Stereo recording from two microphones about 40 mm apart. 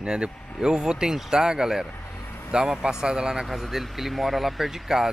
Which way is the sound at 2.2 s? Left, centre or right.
Left.